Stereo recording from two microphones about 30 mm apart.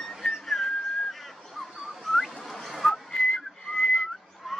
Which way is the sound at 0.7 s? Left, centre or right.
Left.